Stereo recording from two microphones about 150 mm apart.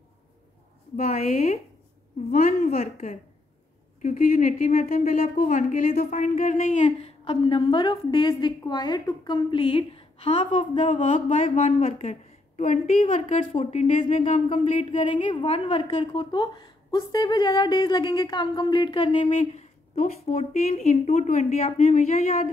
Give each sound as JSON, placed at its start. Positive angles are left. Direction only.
{"t": 2.3, "sound": "a woman's voice", "side_deg": 60}
{"t": 4.0, "sound": "a woman's voice", "side_deg": 60}